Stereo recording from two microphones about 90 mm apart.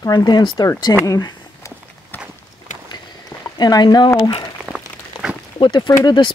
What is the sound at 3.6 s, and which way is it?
Speech, 50° left (ahead or behind).